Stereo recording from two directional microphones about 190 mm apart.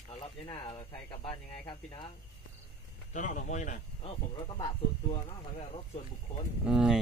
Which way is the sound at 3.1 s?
40° left (ahead or behind).